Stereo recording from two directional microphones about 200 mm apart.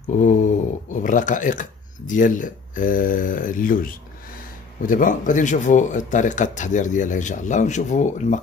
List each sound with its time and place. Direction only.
0.0 s speech: 40° left (ahead or behind)